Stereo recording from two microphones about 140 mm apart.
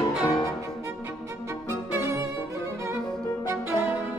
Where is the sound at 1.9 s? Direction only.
20° right (ahead or behind).